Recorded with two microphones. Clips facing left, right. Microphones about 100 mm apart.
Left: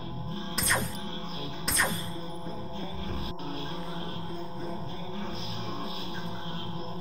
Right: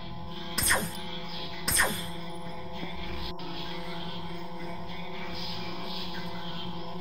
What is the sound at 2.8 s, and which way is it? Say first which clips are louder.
Music: left 2 dB; 30° left (ahead or behind).